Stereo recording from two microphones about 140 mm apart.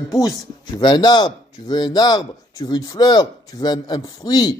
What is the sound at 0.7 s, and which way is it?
Speech, 30° left (ahead or behind).